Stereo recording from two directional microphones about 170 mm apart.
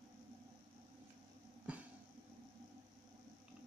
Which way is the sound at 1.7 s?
5° right (ahead or behind).